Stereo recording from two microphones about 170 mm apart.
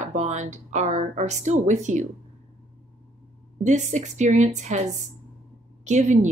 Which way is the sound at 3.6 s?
45° right (ahead or behind).